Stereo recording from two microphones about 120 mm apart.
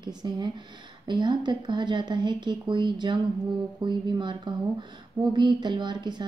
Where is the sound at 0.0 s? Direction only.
40° right (ahead or behind).